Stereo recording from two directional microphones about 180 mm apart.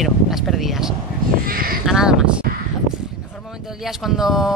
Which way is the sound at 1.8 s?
5° right (ahead or behind).